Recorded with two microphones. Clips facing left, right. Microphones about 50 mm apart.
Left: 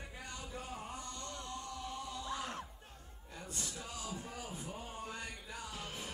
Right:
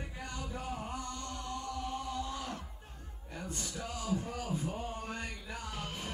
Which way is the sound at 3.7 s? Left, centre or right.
Right.